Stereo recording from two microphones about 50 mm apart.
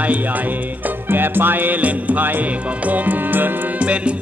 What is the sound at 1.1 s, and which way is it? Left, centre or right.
Music, right.